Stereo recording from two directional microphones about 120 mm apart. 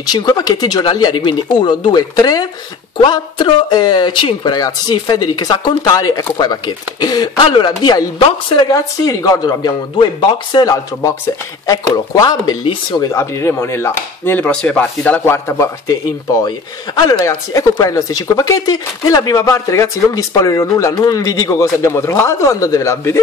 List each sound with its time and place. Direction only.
0.0 s speech: 35° left (ahead or behind)
13.1 s speech: 20° left (ahead or behind)
15.3 s speech: 25° left (ahead or behind)
17.1 s speech: 35° left (ahead or behind)